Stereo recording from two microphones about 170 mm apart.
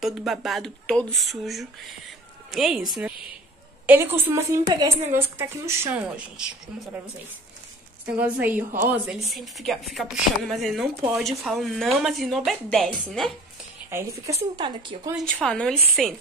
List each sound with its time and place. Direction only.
0.0 s a woman's voice: centre (ahead or behind)
8.2 s a woman's voice: 10° right (ahead or behind)
13.8 s a woman's voice: 15° right (ahead or behind)
15.4 s a woman's voice: 5° left (ahead or behind)